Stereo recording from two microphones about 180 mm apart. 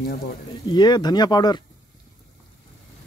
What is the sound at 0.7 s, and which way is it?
Speech, 25° left (ahead or behind).